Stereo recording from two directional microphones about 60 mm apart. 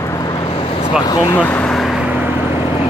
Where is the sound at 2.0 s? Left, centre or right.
Right.